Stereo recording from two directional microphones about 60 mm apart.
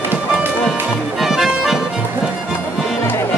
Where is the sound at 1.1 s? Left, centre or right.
Centre.